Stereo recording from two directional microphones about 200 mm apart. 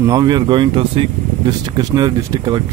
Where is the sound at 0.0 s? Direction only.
20° right (ahead or behind).